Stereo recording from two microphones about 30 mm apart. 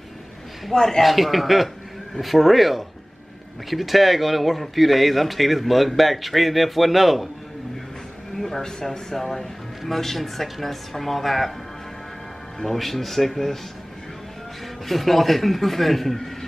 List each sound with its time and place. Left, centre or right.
0.7 s speech: centre
1.0 s speech: centre
8.4 s a sound: centre
9.1 s speech: centre
12.5 s speech: centre
14.9 s speech: centre